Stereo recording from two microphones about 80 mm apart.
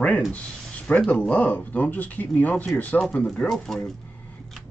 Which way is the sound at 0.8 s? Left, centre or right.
Centre.